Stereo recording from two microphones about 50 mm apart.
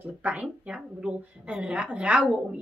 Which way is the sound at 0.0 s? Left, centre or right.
Right.